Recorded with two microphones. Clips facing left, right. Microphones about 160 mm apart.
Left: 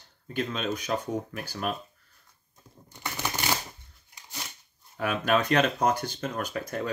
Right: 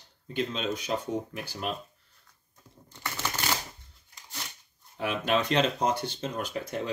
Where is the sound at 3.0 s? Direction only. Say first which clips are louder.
Left 1 dB; 15° left (ahead or behind).